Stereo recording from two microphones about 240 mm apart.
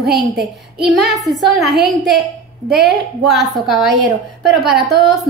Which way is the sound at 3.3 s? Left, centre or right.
Centre.